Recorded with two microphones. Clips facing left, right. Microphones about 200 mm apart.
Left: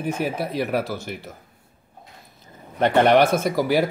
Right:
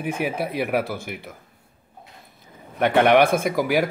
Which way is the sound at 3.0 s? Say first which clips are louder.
Even; 55° right (ahead or behind).